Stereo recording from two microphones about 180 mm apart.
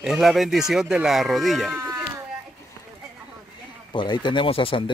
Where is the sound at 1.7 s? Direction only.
15° right (ahead or behind).